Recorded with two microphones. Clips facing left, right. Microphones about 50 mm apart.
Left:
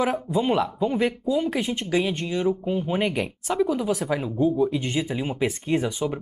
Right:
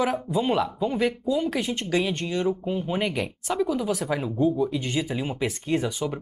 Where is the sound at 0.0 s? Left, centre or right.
Centre.